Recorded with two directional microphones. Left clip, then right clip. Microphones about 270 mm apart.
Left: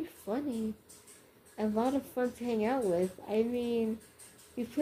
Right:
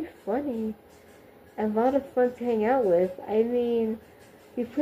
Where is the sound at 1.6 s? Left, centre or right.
Centre.